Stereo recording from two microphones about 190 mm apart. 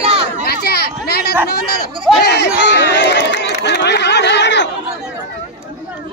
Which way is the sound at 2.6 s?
65° left (ahead or behind).